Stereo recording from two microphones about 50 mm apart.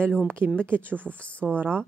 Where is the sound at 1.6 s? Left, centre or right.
Right.